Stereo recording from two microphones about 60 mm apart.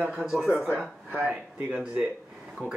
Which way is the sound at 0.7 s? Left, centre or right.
Right.